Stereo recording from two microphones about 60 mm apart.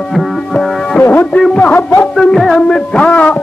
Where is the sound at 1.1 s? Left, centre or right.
Left.